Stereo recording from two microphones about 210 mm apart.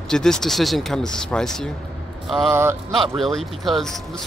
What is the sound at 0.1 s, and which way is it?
Speech, centre (ahead or behind).